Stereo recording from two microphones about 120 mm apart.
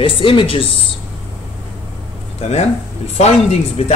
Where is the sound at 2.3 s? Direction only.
60° left (ahead or behind).